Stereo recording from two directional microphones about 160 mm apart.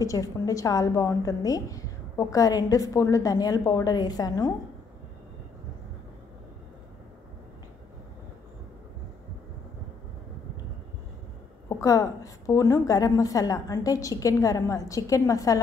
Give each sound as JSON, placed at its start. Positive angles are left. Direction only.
{"t": 0.0, "sound": "a woman's voice", "side_deg": 20}
{"t": 11.8, "sound": "a woman's voice", "side_deg": 20}